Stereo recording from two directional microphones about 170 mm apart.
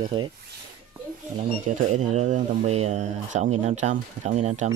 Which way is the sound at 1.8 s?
45° right (ahead or behind).